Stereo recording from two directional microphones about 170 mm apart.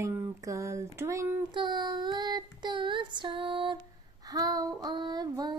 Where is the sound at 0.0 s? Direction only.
20° right (ahead or behind).